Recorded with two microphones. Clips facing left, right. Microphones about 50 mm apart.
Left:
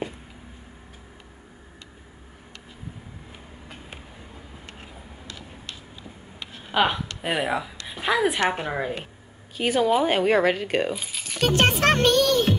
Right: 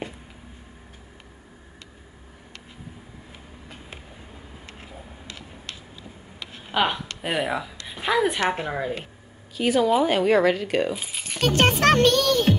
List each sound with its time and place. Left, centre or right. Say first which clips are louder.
6.7 s speech: left 1 dB; centre
7.8 s a sound: right 1 dB; centre
8.5 s a woman's voice: even; centre
9.6 s speech: right 1 dB; left
11.1 s a sound: even; right
11.4 s speech: right 1 dB; centre